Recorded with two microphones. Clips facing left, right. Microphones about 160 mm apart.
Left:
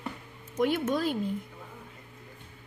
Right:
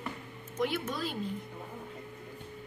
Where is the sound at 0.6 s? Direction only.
50° left (ahead or behind).